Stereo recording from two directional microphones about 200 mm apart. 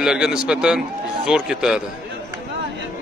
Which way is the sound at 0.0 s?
5° right (ahead or behind).